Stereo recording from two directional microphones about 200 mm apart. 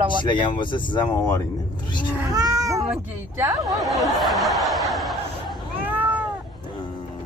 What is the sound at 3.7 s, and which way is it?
Snicker, centre (ahead or behind).